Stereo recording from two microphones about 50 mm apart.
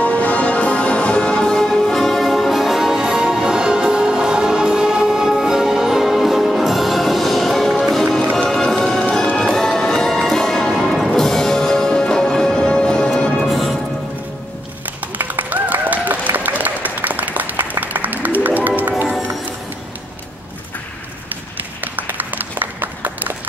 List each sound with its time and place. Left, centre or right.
0.0 s music: left; by 13.6 s centre
15.1 s applause: right
18.8 s music: right
21.8 s a sound: right